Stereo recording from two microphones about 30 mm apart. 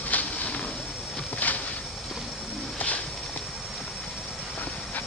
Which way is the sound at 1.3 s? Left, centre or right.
Left.